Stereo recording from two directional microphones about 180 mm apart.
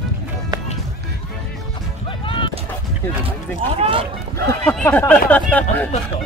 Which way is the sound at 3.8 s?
30° right (ahead or behind).